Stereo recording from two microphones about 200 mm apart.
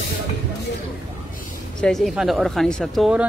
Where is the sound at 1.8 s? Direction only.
Centre (ahead or behind).